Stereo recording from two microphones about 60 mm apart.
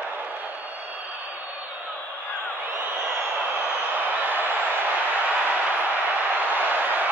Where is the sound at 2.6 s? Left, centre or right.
Right.